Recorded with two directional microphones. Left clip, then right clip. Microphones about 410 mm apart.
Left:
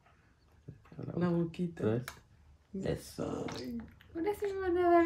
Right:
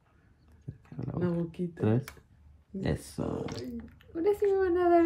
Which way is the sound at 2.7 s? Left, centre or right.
Centre.